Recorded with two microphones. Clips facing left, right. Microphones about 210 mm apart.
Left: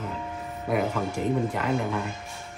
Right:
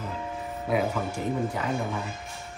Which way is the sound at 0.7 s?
Centre (ahead or behind).